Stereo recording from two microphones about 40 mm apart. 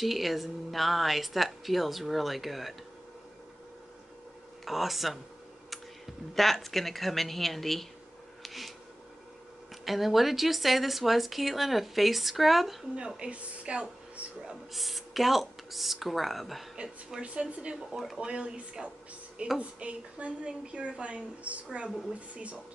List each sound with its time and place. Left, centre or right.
0.0 s speech: centre
4.6 s speech: centre
6.3 s speech: centre
8.4 s a sound: centre
9.8 s speech: centre
13.2 s speech: right
14.7 s speech: centre
17.2 s a woman's voice: right
17.9 s speech: centre
18.2 s a woman's voice: right